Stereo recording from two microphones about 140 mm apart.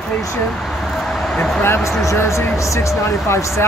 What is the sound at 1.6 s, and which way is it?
Speech, 15° left (ahead or behind).